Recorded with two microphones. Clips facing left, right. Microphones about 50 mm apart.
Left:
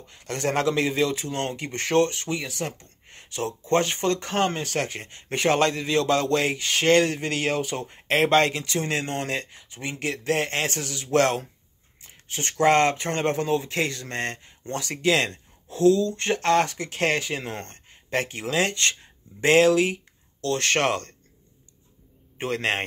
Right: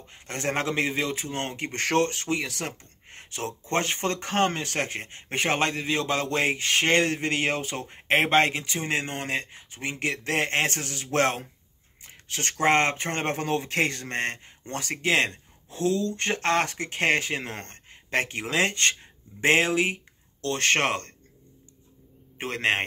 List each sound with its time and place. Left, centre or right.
0.1 s speech: right
2.8 s speech: right
12.0 s a sound: right
12.5 s speech: right
22.4 s speech: right